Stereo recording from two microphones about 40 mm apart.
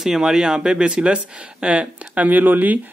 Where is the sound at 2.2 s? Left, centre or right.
Right.